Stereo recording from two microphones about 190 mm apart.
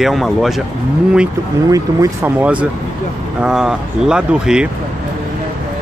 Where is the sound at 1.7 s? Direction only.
15° right (ahead or behind).